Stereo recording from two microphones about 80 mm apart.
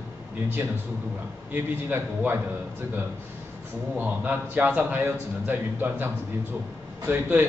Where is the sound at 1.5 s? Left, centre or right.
Right.